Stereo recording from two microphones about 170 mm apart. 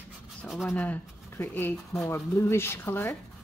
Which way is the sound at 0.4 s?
Centre (ahead or behind).